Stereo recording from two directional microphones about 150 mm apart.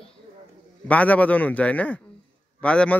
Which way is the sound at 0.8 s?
10° left (ahead or behind).